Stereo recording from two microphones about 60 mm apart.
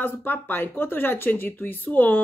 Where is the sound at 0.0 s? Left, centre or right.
Left.